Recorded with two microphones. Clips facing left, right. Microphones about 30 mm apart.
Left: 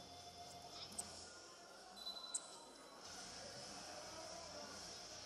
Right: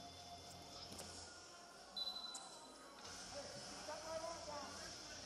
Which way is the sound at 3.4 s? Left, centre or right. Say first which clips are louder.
Right 2 dB; centre.